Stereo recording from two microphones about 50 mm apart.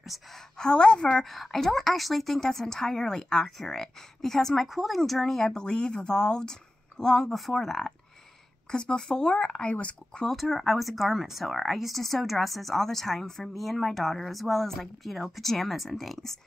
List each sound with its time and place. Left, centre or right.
0.1 s speech: centre
0.6 s a woman's voice: centre
1.2 s a woman's voice: centre
4.6 s a woman's voice: centre; by 10.2 s left
10.3 s a woman's voice: centre